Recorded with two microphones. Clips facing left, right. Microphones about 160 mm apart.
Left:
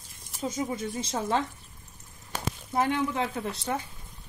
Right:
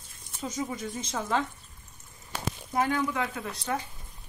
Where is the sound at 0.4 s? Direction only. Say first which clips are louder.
Left 2 dB; 20° left (ahead or behind).